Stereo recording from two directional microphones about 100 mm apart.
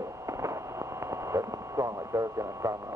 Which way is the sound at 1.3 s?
30° right (ahead or behind).